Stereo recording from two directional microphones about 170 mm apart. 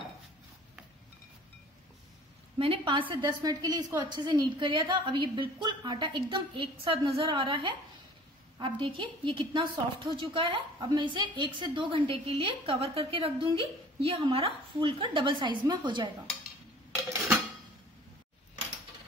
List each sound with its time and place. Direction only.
2.6 s a woman's voice: 30° right (ahead or behind)